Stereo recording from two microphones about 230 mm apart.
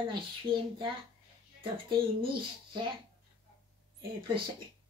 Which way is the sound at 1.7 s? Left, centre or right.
Right.